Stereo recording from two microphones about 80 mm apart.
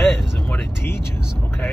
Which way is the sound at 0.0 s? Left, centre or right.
Left.